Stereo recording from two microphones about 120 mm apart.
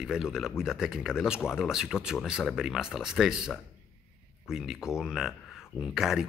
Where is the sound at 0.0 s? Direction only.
5° right (ahead or behind).